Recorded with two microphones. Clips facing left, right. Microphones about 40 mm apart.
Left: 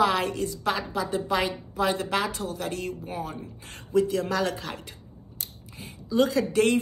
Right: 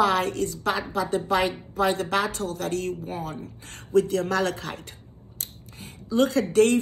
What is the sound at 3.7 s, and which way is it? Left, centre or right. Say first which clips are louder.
A woman's voice: right 2 dB; right.